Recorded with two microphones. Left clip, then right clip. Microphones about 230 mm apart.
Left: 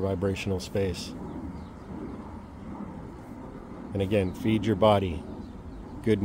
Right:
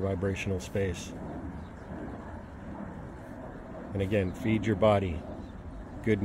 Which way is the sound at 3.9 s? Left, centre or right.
Centre.